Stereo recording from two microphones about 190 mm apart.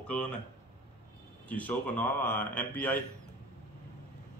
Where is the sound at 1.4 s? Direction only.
10° left (ahead or behind).